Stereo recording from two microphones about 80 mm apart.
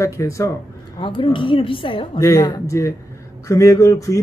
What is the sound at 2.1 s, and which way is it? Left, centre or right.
Mantra, left.